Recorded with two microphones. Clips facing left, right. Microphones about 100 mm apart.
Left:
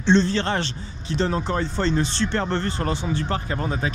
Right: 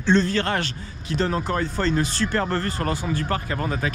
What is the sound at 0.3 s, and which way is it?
Speech, 30° left (ahead or behind).